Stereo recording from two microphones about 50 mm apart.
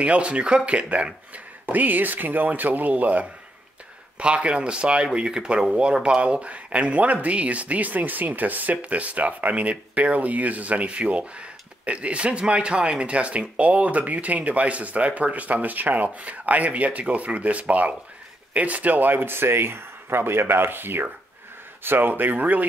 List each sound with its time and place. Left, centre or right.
0.0 s speech: right